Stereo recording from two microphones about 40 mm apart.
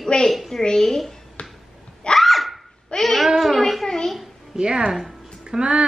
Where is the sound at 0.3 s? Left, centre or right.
Centre.